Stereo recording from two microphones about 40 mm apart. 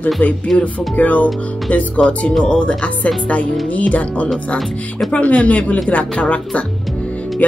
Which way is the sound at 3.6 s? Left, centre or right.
Left.